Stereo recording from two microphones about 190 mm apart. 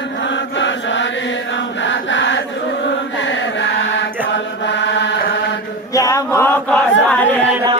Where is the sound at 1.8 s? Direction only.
75° left (ahead or behind).